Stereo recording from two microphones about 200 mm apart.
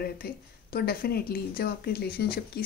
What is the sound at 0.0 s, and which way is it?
Speech, 50° left (ahead or behind).